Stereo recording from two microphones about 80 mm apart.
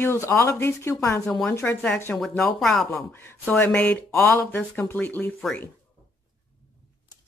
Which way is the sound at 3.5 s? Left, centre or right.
Left.